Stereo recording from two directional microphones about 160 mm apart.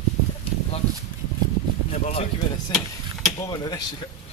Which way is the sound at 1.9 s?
45° left (ahead or behind).